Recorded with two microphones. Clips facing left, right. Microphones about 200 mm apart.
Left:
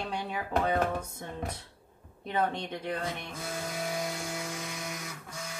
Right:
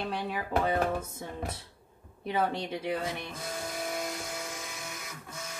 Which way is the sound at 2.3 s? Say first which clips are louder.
Right 1 dB; 5° right (ahead or behind).